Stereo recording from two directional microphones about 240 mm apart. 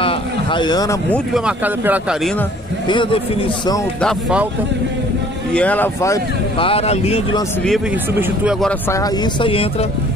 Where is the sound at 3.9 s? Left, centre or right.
Centre.